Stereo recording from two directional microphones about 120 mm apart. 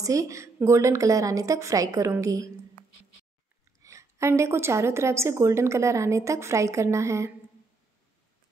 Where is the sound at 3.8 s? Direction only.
25° right (ahead or behind).